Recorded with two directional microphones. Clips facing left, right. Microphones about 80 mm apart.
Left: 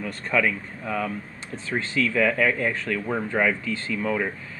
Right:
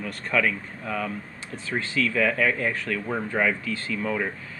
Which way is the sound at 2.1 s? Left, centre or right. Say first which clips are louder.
Left 2 dB; centre.